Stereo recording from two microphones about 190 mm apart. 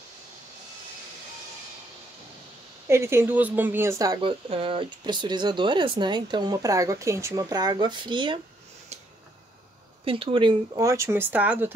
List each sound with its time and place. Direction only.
2.9 s speech: 15° right (ahead or behind)
10.0 s speech: 30° right (ahead or behind); by 11.7 s 5° right (ahead or behind)